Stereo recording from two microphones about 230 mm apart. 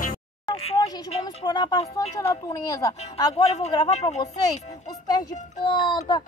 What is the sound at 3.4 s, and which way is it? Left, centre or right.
Speech, left.